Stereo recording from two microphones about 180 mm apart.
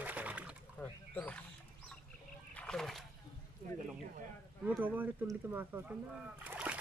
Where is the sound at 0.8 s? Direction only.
10° left (ahead or behind).